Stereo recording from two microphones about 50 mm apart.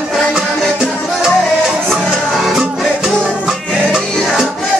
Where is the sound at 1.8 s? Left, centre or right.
Centre.